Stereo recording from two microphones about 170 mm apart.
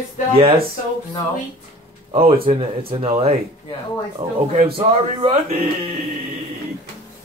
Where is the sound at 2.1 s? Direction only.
30° right (ahead or behind).